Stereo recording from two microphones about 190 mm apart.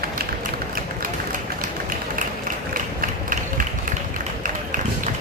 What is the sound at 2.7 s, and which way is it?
Mechanisms, 45° right (ahead or behind).